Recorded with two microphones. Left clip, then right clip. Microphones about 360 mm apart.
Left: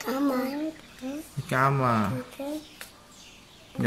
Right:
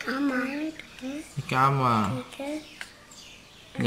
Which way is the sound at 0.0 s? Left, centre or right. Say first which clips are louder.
Left 1 dB; centre.